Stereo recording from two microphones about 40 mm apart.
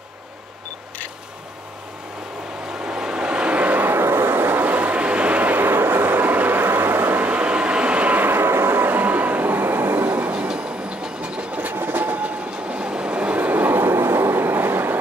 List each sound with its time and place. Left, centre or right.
2.8 s vehicle: right
3.8 s vehicle: right
5.6 s vehicle: right
7.2 s vehicle: right
8.2 s train: right
10.5 s train: right
11.7 s train: right
12.6 s train: right
13.5 s train: right